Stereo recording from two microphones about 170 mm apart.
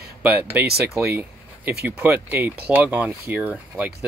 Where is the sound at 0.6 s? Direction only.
70° right (ahead or behind).